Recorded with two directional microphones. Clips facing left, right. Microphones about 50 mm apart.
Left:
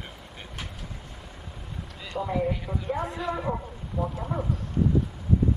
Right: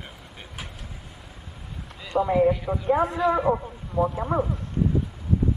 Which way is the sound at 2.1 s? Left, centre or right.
Right.